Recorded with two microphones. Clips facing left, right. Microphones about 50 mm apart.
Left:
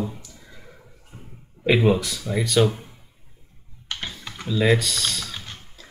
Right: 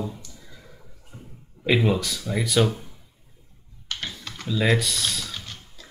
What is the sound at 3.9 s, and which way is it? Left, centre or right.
Typing, centre.